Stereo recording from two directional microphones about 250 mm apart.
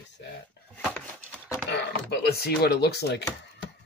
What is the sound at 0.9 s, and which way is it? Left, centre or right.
Chopping, centre.